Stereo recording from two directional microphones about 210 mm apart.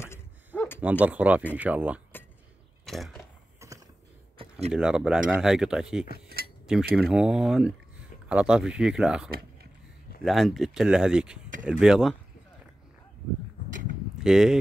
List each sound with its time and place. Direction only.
0.7 s speech: 5° right (ahead or behind)
2.8 s a sound: centre (ahead or behind)
4.4 s a sound: 30° right (ahead or behind)
4.7 s speech: 5° right (ahead or behind)
6.4 s cutlery: 50° right (ahead or behind)
7.0 s speech: 5° right (ahead or behind)
14.2 s speech: centre (ahead or behind)